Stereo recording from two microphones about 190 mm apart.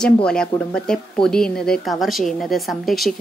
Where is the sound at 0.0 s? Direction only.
5° left (ahead or behind).